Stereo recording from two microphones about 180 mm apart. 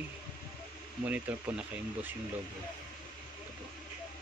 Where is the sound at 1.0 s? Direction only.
10° right (ahead or behind).